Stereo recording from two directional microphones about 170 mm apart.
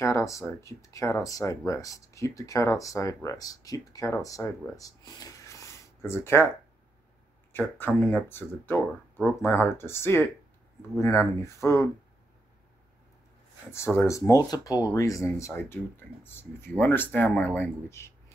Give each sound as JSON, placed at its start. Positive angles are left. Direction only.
{"t": 0.0, "sound": "speech", "side_deg": 15}
{"t": 7.5, "sound": "speech", "side_deg": 10}
{"t": 13.7, "sound": "speech", "side_deg": 15}